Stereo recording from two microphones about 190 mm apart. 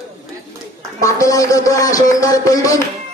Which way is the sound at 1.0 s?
15° left (ahead or behind).